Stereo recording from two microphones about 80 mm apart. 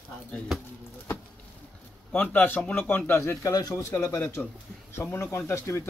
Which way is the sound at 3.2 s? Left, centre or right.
Left.